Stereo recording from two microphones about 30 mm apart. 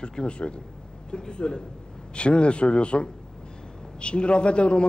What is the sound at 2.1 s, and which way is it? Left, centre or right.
Music, left.